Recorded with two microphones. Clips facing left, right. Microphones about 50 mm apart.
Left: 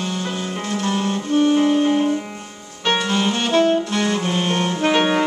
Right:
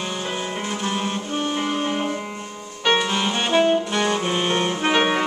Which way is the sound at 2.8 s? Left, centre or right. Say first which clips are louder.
Left 1 dB; centre.